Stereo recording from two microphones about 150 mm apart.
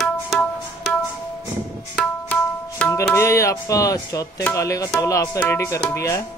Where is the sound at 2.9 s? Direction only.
20° left (ahead or behind).